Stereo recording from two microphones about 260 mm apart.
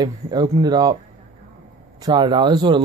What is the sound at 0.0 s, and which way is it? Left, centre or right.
Speech, centre.